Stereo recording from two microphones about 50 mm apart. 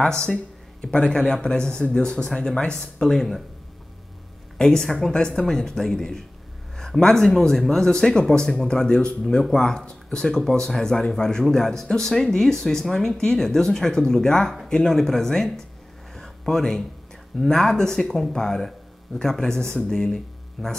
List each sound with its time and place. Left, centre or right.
0.7 s speech: centre
4.6 s speech: centre
16.2 s a sound: centre
17.4 s speech: centre